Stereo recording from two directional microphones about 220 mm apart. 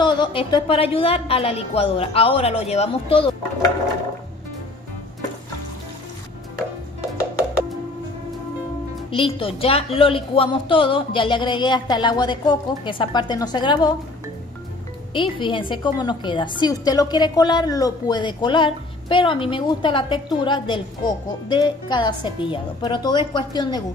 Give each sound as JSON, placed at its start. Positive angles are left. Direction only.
{"t": 0.0, "sound": "a woman's voice", "side_deg": 20}
{"t": 9.1, "sound": "a woman's voice", "side_deg": 25}
{"t": 15.1, "sound": "a woman's voice", "side_deg": 20}